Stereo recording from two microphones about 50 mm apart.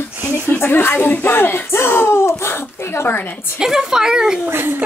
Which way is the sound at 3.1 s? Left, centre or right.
Left.